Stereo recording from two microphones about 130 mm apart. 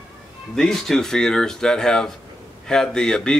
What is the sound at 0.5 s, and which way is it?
Speech, 5° left (ahead or behind).